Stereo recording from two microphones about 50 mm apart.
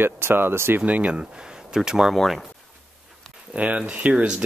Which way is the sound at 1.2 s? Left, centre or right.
Centre.